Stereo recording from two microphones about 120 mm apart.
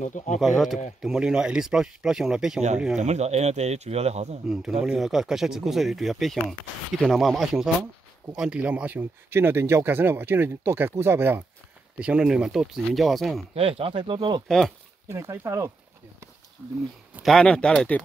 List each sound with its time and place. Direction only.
0.0 s speech: 90° left
0.4 s speech: centre (ahead or behind)
3.0 s speech: 70° right (ahead or behind)
4.5 s speech: 5° right (ahead or behind)
13.6 s speech: 55° right (ahead or behind)
15.0 s speech: 25° right (ahead or behind)
17.2 s speech: 5° left (ahead or behind)